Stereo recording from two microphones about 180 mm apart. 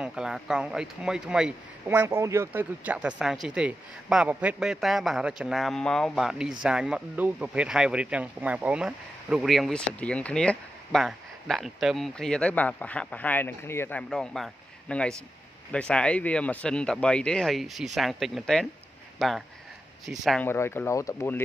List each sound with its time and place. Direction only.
0.0 s speech: 5° right (ahead or behind)
20.4 s speech: 15° left (ahead or behind)